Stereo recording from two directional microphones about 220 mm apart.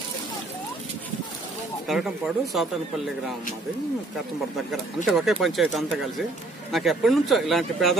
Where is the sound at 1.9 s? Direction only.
Centre (ahead or behind).